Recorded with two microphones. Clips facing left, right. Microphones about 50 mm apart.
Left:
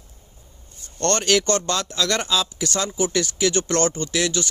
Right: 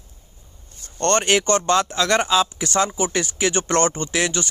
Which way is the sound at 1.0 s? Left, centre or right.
Right.